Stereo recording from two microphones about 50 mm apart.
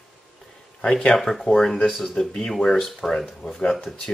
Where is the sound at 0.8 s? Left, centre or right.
Centre.